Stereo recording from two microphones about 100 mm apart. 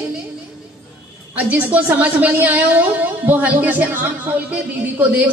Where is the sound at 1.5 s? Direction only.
15° right (ahead or behind).